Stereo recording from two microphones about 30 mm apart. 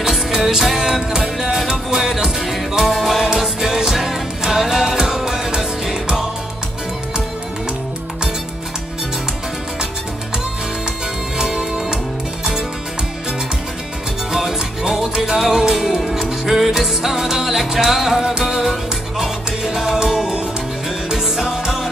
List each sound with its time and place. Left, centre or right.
0.3 s music: centre
3.3 s music: centre
11.3 s music: right
14.3 s music: centre